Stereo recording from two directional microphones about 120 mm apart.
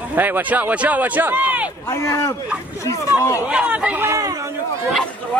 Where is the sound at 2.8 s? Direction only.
25° left (ahead or behind).